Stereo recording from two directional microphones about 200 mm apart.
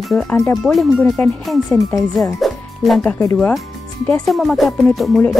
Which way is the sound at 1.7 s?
15° left (ahead or behind).